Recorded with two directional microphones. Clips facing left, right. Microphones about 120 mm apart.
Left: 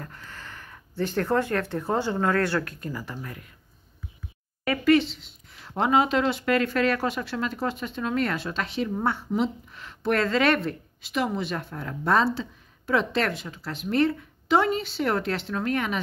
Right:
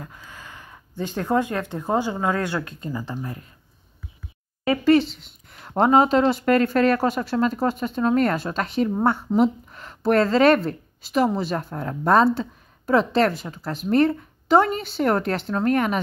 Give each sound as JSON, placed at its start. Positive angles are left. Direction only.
{"t": 0.0, "sound": "speech", "side_deg": -10}
{"t": 4.6, "sound": "speech", "side_deg": -35}